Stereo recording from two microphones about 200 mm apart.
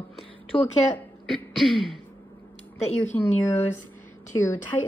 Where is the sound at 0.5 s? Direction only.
25° left (ahead or behind).